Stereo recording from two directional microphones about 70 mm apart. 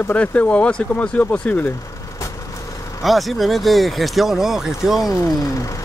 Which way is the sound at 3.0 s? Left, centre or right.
Centre.